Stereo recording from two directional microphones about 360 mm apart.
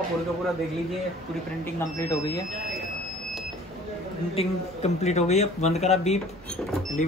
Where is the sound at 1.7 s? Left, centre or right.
Centre.